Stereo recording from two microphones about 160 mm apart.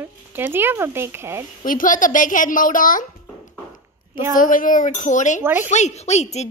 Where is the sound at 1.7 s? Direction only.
55° left (ahead or behind).